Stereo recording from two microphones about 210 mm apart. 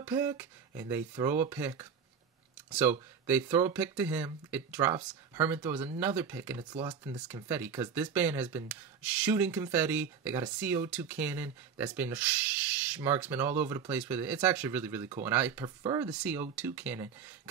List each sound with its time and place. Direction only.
0.0 s speech: 10° right (ahead or behind)
6.6 s speech: 25° right (ahead or behind)
7.1 s speech: 5° right (ahead or behind)
15.6 s speech: 20° right (ahead or behind)
16.1 s speech: 5° right (ahead or behind)